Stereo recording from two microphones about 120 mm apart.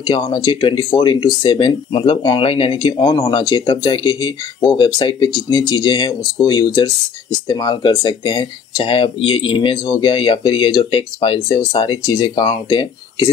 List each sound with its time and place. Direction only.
0.0 s speech: 40° left (ahead or behind)
3.0 s speech: 30° left (ahead or behind)